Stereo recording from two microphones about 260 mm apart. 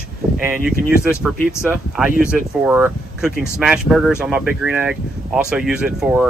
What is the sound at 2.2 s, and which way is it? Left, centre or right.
Speech, centre.